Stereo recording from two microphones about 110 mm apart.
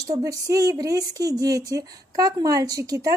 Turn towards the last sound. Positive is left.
turn(degrees=-30)  # may be behind; listen again after turning